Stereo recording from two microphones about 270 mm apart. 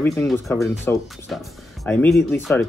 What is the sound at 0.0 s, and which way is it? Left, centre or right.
Speech, centre.